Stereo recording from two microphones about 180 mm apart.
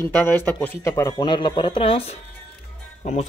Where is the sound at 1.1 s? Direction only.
30° left (ahead or behind).